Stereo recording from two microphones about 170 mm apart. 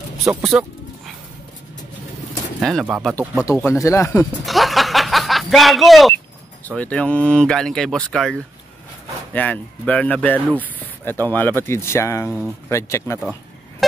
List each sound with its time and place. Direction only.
0.4 s a sound: centre (ahead or behind)
2.6 s speech: 5° right (ahead or behind)
3.4 s speech: 15° left (ahead or behind)
4.5 s a sound: centre (ahead or behind)
6.7 s speech: 5° left (ahead or behind)
13.2 s music: centre (ahead or behind)